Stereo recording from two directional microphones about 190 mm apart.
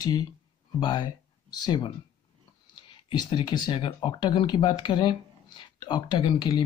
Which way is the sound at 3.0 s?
25° left (ahead or behind).